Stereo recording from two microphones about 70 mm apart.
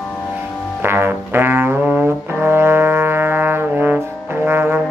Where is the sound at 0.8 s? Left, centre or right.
Right.